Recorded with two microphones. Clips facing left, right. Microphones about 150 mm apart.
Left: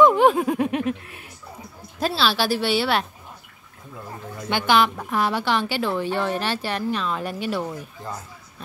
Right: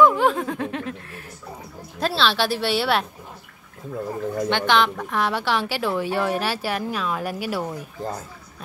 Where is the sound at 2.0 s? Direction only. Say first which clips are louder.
Even; 5° left (ahead or behind).